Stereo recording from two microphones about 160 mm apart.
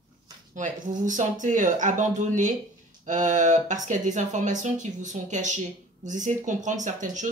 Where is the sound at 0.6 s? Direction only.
55° right (ahead or behind).